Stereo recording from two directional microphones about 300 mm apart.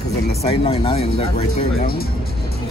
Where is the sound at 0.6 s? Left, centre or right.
Centre.